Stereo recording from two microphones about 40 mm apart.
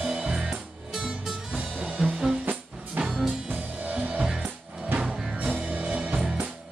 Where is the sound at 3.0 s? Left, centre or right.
Right.